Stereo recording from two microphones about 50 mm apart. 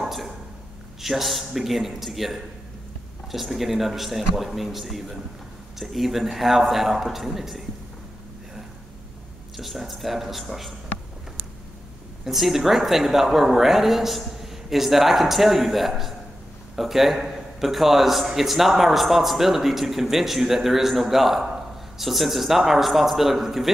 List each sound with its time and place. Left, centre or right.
0.0 s a sound: centre
1.0 s a man's voice: centre
9.6 s a man's voice: centre
12.3 s a man's voice: centre